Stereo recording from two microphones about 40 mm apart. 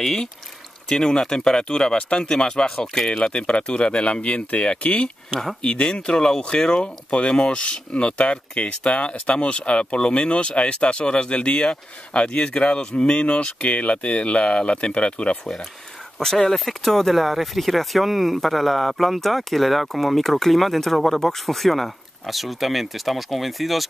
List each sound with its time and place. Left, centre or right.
0.0 s speech: centre
3.1 s speech: left
16.2 s speech: centre